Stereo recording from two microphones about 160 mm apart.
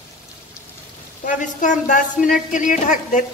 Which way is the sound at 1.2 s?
55° left (ahead or behind).